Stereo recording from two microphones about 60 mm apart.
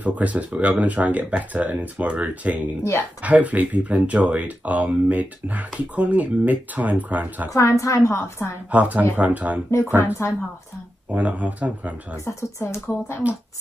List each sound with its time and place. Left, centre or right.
0.0 s speech: right
7.5 s a woman's voice: left
8.1 s a woman's voice: left
8.7 s speech: right
10.0 s a woman's voice: left
11.1 s speech: right
12.4 s a woman's voice: left
13.2 s speech: right